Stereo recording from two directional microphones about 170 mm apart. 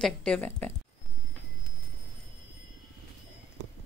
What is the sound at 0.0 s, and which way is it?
Speech, 5° left (ahead or behind).